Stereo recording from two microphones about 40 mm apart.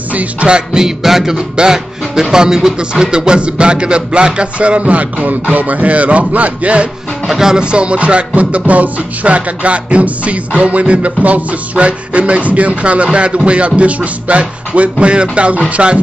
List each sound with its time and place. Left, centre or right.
0.1 s music: right
0.7 s speech: centre
2.3 s a sound: centre; by 6.9 s right
7.2 s music: centre
7.6 s music: right
15.7 s a sound: right